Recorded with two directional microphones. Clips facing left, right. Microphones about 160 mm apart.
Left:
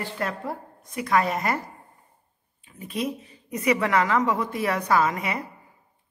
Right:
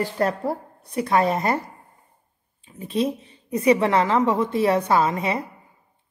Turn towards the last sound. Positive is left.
turn(degrees=-30)  # may be behind; listen again after turning